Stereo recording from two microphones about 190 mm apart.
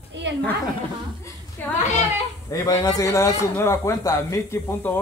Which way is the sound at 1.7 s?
40° left (ahead or behind).